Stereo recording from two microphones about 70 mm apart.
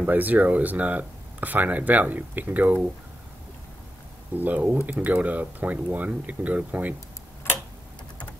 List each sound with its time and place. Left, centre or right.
0.0 s speech: right
4.4 s speech: right